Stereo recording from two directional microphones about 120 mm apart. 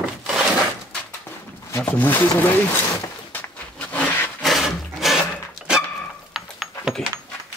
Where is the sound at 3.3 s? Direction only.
15° left (ahead or behind).